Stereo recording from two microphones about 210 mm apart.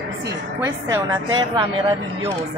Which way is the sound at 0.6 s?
15° right (ahead or behind).